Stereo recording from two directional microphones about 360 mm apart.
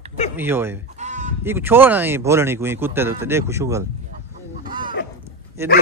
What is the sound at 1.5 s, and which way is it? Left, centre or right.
Speech, centre.